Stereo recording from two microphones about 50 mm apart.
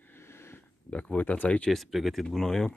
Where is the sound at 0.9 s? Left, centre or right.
Left.